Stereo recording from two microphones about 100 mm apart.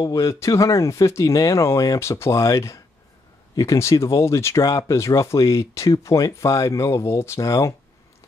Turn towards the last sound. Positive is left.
turn(degrees=35)  # may be behind; listen again after turning